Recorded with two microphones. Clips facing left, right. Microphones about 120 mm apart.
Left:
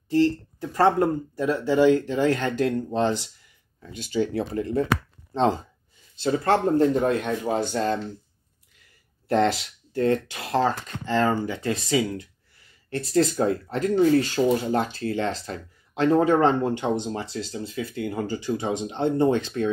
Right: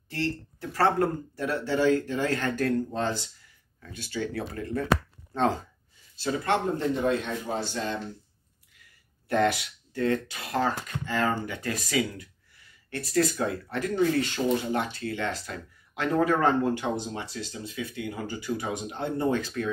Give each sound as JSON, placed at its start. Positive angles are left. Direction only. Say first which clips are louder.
{"t": 0.1, "sound": "speech", "louder": "left 10 dB", "side_deg": 20}
{"t": 6.1, "sound": "speech", "louder": "left 5 dB", "side_deg": 30}
{"t": 7.0, "sound": "speech", "louder": "left 4 dB", "side_deg": 50}
{"t": 9.3, "sound": "speech", "louder": "left 3 dB", "side_deg": 25}